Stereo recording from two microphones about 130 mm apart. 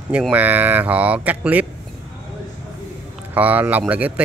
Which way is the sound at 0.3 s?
10° right (ahead or behind).